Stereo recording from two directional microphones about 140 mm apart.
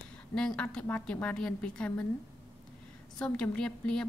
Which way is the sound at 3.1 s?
5° left (ahead or behind).